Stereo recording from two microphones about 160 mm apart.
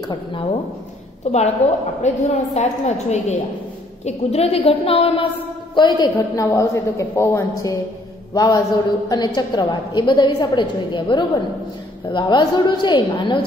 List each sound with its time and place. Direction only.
0.1 s a woman's voice: 30° left (ahead or behind)
1.3 s a woman's voice: 45° left (ahead or behind)
2.5 s a woman's voice: 45° left (ahead or behind)
5.8 s a woman's voice: 25° left (ahead or behind)